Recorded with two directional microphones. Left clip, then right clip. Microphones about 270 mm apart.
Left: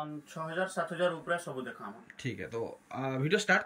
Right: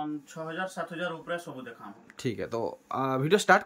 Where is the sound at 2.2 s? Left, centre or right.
Centre.